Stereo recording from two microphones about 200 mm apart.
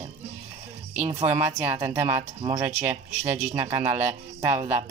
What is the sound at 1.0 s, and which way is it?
Speech, 15° right (ahead or behind).